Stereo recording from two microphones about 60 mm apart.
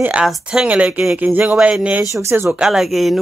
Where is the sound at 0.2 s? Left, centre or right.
Centre.